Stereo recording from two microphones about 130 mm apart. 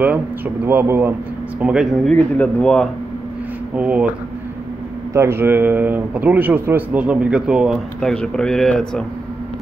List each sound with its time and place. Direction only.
0.7 s speech: 15° right (ahead or behind)
1.6 s a man's voice: 5° right (ahead or behind)
2.1 s speech: 10° left (ahead or behind)
3.7 s speech: 10° right (ahead or behind)
5.1 s speech: 20° right (ahead or behind)
8.1 s a man's voice: 5° left (ahead or behind)